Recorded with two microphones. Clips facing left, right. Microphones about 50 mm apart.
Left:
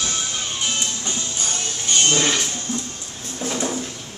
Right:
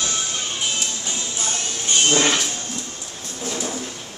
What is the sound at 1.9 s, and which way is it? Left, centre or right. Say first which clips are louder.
Music: right 1 dB; centre.